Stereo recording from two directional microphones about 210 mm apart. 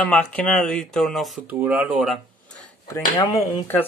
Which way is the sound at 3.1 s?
20° left (ahead or behind).